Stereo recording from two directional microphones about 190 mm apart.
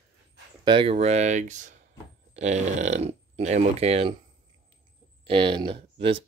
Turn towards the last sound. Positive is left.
turn(degrees=-25)  # may be behind; listen again after turning